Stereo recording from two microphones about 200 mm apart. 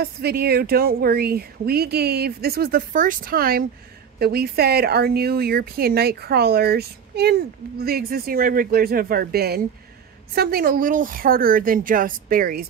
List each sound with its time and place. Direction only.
0.0 s a woman's voice: 50° right (ahead or behind)